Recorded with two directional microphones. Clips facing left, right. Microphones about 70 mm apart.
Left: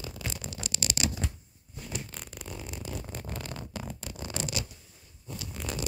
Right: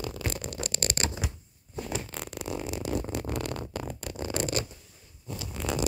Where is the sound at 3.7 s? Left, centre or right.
Right.